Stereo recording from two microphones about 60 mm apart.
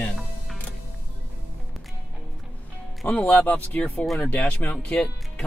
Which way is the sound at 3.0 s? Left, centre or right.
Left.